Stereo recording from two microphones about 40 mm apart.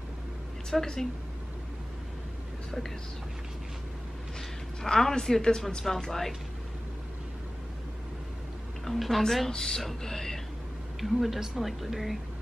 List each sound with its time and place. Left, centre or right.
0.7 s music: centre
4.8 s music: centre
8.8 s a woman's voice: centre
9.5 s music: centre
11.0 s speech: centre